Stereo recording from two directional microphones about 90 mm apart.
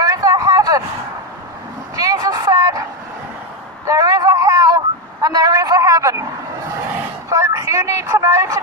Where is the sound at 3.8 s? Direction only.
40° right (ahead or behind).